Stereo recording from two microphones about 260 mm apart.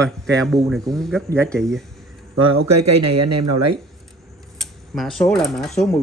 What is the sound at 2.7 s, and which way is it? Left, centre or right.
Speech, right.